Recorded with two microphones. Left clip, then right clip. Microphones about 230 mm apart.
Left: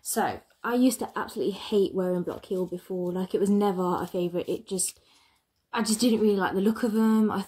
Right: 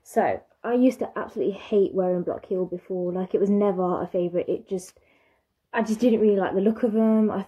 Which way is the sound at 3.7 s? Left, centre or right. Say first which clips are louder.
Right 3 dB; left.